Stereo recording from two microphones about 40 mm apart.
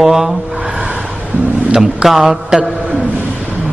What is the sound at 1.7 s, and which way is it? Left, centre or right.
Speech, centre.